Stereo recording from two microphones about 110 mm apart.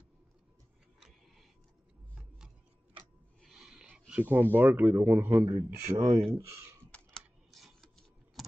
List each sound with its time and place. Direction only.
3.4 s a sound: 5° right (ahead or behind)
4.1 s speech: 15° right (ahead or behind)
5.6 s speech: 40° right (ahead or behind)
6.3 s speech: 30° right (ahead or behind)
6.9 s computer keyboard: 5° left (ahead or behind)
8.4 s vehicle: centre (ahead or behind)